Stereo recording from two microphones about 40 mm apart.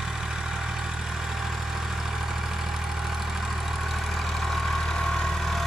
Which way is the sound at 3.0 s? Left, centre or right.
Centre.